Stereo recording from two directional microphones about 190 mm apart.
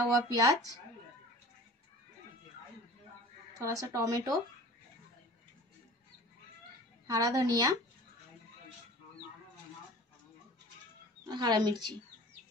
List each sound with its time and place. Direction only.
0.1 s speech: 15° right (ahead or behind)
3.5 s speech: 15° right (ahead or behind)
7.1 s speech: 20° right (ahead or behind)
11.2 s speech: 20° right (ahead or behind)